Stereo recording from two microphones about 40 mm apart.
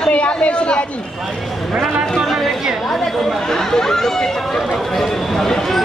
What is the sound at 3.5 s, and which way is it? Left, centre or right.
Chatter, centre.